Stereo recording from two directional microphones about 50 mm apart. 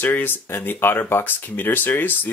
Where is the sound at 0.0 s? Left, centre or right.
Left.